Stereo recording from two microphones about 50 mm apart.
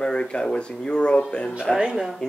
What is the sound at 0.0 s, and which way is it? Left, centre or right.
Speech, centre.